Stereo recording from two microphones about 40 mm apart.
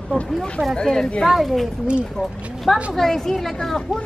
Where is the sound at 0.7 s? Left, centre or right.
Centre.